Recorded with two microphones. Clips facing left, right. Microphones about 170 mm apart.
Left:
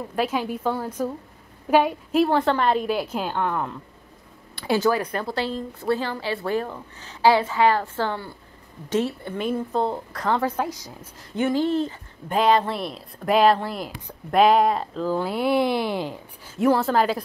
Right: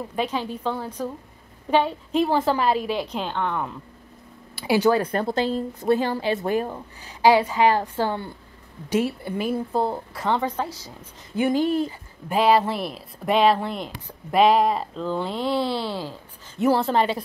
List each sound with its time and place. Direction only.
0.1 s speech: 5° left (ahead or behind)
2.2 s speech: centre (ahead or behind)
4.6 s speech: 10° right (ahead or behind)
4.9 s a woman's voice: 30° right (ahead or behind); by 10.4 s 5° right (ahead or behind)
10.4 s speech: 10° left (ahead or behind)
11.0 s speech: 15° right (ahead or behind); by 16.2 s 15° left (ahead or behind)
16.8 s speech: centre (ahead or behind)